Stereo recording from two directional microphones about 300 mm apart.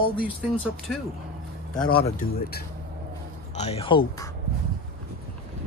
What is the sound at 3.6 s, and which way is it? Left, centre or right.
Speech, centre.